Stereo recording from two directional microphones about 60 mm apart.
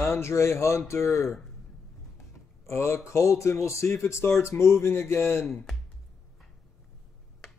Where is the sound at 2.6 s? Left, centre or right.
Left.